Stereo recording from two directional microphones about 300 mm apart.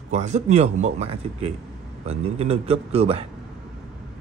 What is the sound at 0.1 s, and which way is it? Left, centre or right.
Speech, right.